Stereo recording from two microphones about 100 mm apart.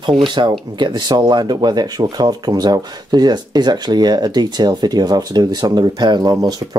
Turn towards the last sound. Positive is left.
turn(degrees=-40)  # may be behind; listen again after turning